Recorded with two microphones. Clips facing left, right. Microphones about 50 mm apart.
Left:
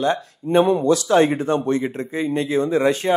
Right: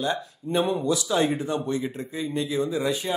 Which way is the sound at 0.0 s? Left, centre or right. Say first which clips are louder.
Left 6 dB; left.